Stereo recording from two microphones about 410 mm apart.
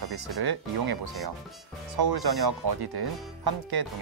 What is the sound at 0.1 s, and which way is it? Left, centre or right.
Speech, right.